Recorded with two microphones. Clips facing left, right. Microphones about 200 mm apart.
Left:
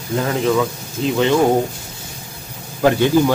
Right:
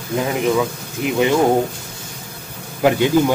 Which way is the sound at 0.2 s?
15° right (ahead or behind).